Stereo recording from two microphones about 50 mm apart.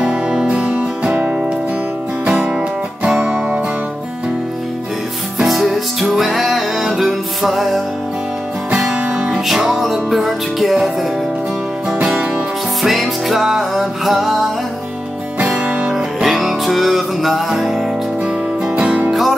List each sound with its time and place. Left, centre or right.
0.0 s music: centre
3.3 s music: right
5.4 s music: centre
9.1 s music: centre
11.9 s music: centre
12.8 s music: centre
15.3 s music: right
15.9 s music: centre
18.8 s music: right
19.0 s music: centre